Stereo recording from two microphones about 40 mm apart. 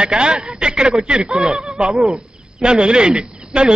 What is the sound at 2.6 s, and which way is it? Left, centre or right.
A man's voice, right.